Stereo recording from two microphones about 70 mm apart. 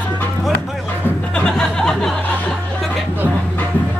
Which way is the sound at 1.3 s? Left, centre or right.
Centre.